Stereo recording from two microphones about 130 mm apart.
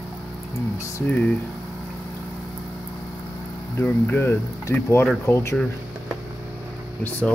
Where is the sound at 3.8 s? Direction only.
15° left (ahead or behind).